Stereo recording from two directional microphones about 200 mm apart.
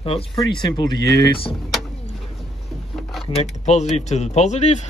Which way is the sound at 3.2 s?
25° left (ahead or behind).